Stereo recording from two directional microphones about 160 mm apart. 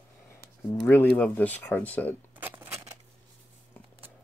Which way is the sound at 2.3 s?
10° right (ahead or behind).